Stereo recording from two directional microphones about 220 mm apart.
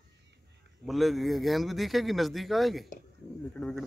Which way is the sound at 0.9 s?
Centre (ahead or behind).